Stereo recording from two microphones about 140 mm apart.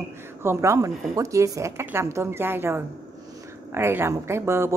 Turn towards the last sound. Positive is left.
turn(degrees=-20)  # may be behind; listen again after turning